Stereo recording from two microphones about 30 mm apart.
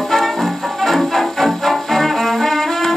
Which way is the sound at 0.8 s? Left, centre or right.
Centre.